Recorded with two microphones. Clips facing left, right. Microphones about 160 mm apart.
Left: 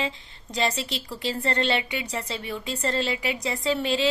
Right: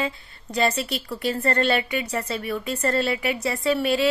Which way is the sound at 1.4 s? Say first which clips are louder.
Right 3 dB; 15° left (ahead or behind).